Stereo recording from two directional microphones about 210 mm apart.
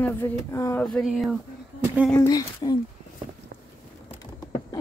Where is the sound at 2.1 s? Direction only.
15° left (ahead or behind).